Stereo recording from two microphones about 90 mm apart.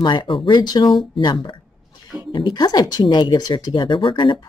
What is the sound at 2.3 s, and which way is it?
Speech, 60° left (ahead or behind).